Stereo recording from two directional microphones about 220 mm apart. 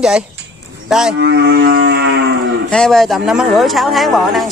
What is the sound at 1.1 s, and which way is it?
Livestock, 50° right (ahead or behind).